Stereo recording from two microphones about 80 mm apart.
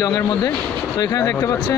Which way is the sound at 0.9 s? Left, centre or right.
Left.